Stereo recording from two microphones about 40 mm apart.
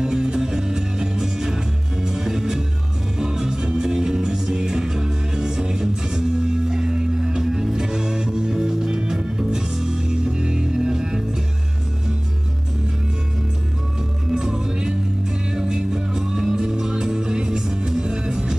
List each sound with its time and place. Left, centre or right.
0.0 s music: centre
14.3 s music: centre